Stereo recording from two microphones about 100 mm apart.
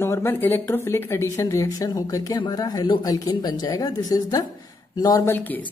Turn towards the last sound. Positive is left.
turn(degrees=20)  # may be behind; listen again after turning